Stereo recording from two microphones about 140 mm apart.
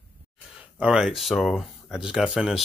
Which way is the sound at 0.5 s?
5° right (ahead or behind).